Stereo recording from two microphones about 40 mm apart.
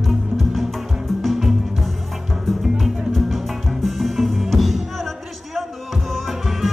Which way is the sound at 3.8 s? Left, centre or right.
Centre.